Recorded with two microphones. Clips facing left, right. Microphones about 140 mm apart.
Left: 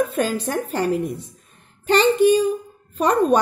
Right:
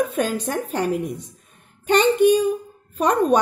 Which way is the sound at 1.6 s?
10° right (ahead or behind).